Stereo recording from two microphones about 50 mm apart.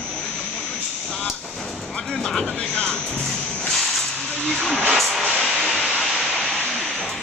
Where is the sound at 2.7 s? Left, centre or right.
Centre.